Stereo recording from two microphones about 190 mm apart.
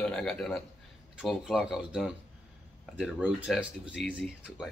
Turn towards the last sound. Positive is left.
turn(degrees=-5)  # may be behind; listen again after turning